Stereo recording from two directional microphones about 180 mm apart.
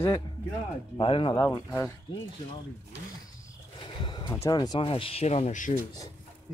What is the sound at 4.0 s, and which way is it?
Speech, 25° left (ahead or behind).